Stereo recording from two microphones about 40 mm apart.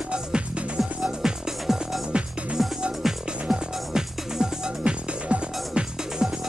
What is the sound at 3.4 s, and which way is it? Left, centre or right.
Music, centre.